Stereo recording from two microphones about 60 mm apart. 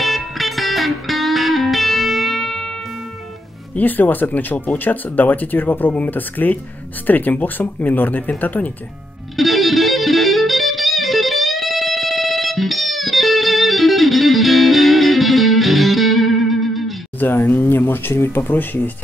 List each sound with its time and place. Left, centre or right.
0.0 s music: centre
3.7 s speech: left
9.4 s music: centre
17.5 s speech: left